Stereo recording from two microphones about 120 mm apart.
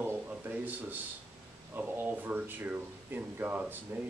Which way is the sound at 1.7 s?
15° right (ahead or behind).